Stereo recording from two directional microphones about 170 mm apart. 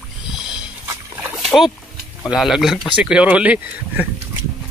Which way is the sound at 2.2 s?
Centre (ahead or behind).